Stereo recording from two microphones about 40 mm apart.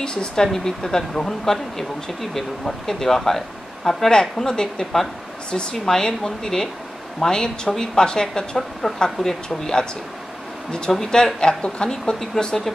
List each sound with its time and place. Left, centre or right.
0.0 s speech: left
2.9 s speech: centre
11.0 s speech: centre